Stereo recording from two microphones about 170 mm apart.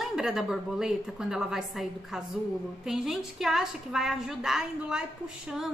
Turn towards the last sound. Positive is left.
turn(degrees=-5)  # may be behind; listen again after turning